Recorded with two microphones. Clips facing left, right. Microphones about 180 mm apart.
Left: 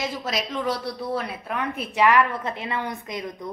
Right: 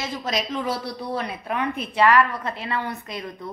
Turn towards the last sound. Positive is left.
turn(degrees=20)  # may be behind; listen again after turning